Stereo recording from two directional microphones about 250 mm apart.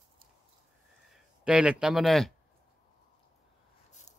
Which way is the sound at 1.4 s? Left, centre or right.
Centre.